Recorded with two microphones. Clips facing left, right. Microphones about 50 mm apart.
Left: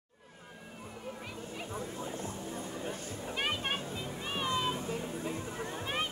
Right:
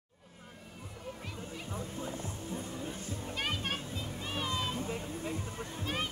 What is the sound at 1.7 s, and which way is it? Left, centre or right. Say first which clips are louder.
Music: even; left.